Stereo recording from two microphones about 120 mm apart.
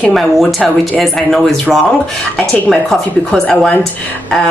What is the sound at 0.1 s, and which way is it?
A woman's voice, centre (ahead or behind).